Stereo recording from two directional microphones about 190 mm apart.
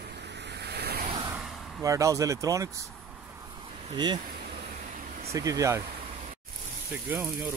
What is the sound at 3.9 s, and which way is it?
Speech, 25° right (ahead or behind).